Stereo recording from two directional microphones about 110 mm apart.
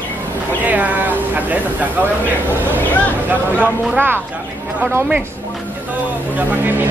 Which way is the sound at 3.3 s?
15° right (ahead or behind).